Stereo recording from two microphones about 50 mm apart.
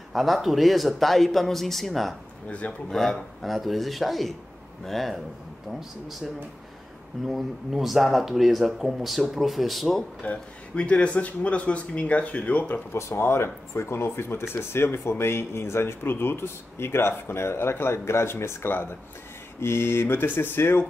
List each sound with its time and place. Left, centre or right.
0.1 s speech: centre
2.4 s speech: left
2.9 s speech: centre
3.4 s speech: centre
7.2 s speech: centre
10.2 s speech: left
12.9 s speech: left
19.6 s speech: left